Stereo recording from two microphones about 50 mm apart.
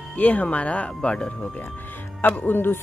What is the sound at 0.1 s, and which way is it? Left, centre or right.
Speech, left.